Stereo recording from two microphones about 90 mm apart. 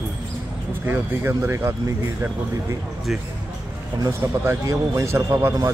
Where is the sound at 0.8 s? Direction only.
25° right (ahead or behind).